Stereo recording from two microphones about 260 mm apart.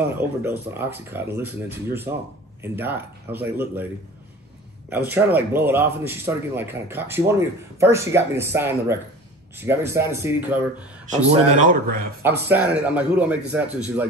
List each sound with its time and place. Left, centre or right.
0.2 s speech: centre
4.8 s speech: centre
11.1 s speech: right
12.2 s speech: centre